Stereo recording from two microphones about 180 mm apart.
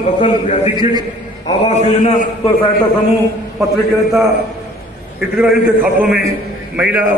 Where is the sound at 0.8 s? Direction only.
20° right (ahead or behind).